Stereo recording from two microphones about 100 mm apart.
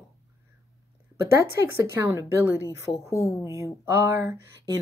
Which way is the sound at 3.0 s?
30° left (ahead or behind).